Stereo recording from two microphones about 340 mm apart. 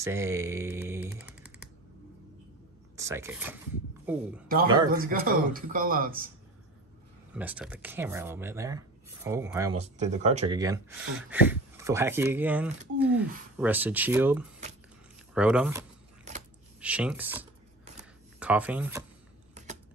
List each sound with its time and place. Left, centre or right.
0.0 s speech: centre
3.0 s speech: centre
4.9 s a man's voice: right
7.3 s speech: centre
16.8 s speech: centre
19.5 s typing: right